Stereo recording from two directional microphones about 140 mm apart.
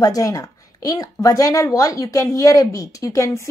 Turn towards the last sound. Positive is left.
turn(degrees=20)  # may be behind; listen again after turning